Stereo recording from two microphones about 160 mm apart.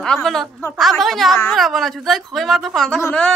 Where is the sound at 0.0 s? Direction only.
5° left (ahead or behind).